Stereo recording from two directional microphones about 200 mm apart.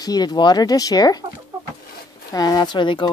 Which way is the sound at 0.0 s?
20° left (ahead or behind).